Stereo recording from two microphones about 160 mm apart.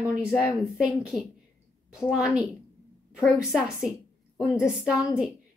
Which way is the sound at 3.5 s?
Centre (ahead or behind).